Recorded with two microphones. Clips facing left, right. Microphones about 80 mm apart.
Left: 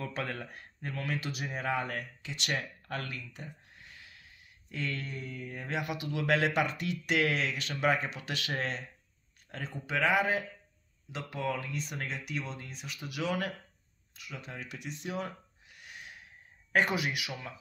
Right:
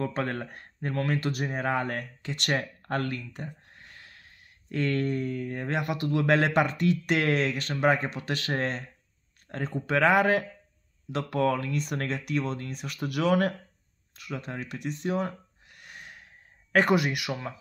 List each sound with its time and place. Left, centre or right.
0.0 s speech: right
14.1 s a sound: right
16.7 s speech: right